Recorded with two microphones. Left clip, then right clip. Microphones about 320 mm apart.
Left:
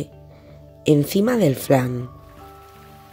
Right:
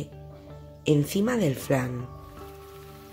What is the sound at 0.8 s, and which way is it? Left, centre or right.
Speech, centre.